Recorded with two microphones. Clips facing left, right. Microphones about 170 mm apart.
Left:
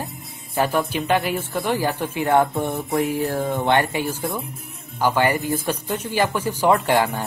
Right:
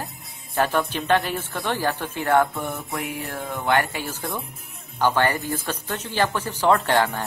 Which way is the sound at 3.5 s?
25° left (ahead or behind).